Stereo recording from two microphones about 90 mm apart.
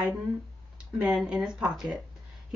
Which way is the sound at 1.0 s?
5° right (ahead or behind).